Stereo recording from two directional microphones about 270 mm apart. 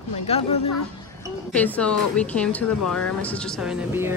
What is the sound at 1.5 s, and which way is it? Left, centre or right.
Speech, centre.